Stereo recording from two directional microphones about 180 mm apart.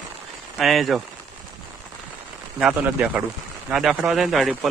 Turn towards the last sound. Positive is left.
turn(degrees=0)  # may be behind; listen again after turning